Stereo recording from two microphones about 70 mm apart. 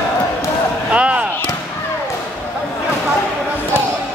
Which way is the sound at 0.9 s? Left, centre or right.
Centre.